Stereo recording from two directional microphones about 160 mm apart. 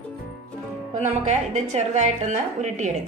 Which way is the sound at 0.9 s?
45° right (ahead or behind).